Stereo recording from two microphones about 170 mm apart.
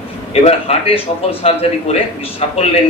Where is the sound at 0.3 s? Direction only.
35° left (ahead or behind).